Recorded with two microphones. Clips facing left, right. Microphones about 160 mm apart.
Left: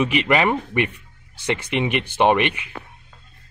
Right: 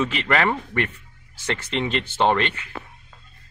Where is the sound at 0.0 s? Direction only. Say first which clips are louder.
Left 3 dB; 15° left (ahead or behind).